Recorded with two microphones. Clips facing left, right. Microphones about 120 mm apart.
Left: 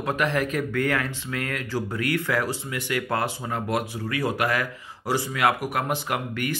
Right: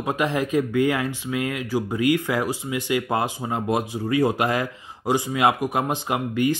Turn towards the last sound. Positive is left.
turn(degrees=-20)  # may be behind; listen again after turning